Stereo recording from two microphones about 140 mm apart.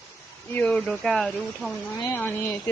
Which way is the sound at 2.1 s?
15° left (ahead or behind).